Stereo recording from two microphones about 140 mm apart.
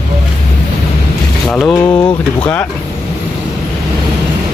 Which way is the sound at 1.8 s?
35° left (ahead or behind).